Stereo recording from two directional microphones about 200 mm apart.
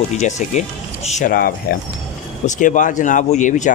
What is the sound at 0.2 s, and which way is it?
Speech, 35° left (ahead or behind).